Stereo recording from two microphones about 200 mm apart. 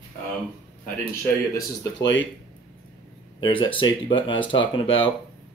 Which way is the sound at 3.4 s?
25° left (ahead or behind).